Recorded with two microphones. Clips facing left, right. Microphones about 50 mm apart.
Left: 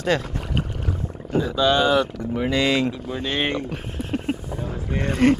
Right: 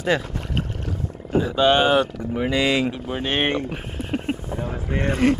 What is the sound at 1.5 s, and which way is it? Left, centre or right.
Speech, right.